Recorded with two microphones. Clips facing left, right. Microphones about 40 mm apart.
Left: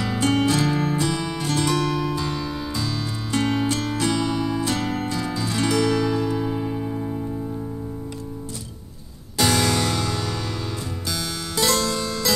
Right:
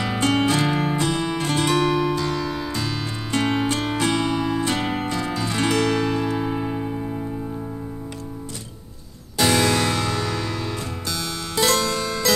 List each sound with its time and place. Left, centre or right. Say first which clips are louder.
0.0 s music: right 1 dB; right
0.5 s music: even; right
2.1 s music: right 2 dB; centre
2.5 s music: right 1 dB; right
9.6 s music: right 2 dB; centre
9.9 s music: right 2 dB; right
11.5 s music: right 2 dB; centre